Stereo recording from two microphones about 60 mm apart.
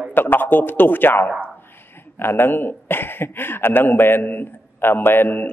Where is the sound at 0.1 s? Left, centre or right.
Left.